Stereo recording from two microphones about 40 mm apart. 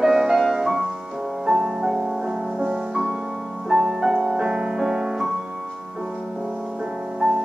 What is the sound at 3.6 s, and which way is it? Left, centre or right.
Music, centre.